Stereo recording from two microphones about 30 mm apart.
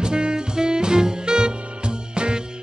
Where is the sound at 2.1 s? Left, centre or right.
Right.